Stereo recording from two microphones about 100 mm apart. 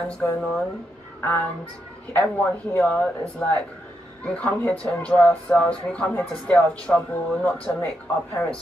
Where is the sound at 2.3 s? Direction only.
20° left (ahead or behind).